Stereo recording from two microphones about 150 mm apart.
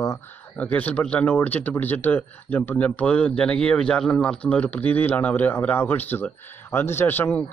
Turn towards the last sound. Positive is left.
turn(degrees=15)  # may be behind; listen again after turning